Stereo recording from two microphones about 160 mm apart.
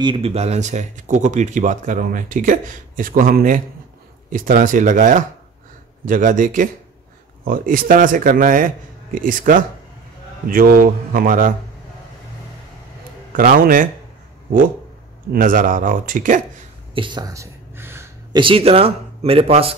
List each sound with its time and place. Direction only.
0.0 s speech: 35° right (ahead or behind); by 11.5 s 60° right (ahead or behind)
13.3 s speech: 60° right (ahead or behind)
15.3 s speech: 60° right (ahead or behind)
16.9 s a sound: 30° right (ahead or behind)
18.3 s speech: 35° right (ahead or behind)